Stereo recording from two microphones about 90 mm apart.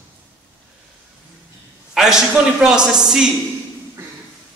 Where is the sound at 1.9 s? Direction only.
5° right (ahead or behind).